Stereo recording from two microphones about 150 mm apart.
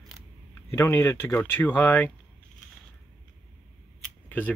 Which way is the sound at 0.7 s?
15° left (ahead or behind).